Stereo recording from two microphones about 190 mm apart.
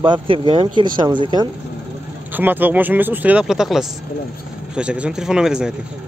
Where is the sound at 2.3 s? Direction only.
10° right (ahead or behind).